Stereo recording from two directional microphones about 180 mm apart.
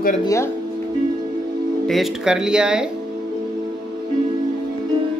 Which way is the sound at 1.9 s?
Centre (ahead or behind).